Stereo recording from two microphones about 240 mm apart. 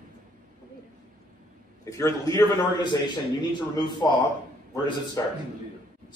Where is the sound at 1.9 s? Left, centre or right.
Centre.